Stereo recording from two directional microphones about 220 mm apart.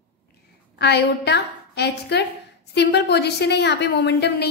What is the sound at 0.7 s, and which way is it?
A woman's voice, 50° left (ahead or behind).